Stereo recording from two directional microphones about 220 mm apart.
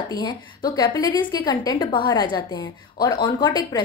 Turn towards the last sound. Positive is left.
turn(degrees=20)  # may be behind; listen again after turning